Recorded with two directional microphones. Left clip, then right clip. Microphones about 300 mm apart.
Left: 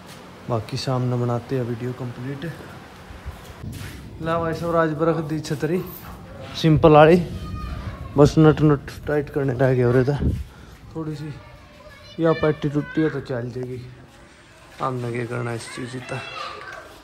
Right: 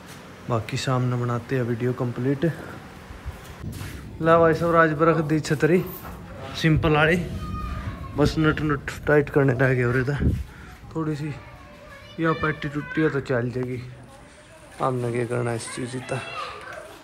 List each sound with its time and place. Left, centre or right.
0.5 s speech: centre
3.7 s a man's voice: centre